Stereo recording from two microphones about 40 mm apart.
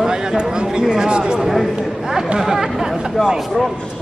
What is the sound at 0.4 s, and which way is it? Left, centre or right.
Speech, right.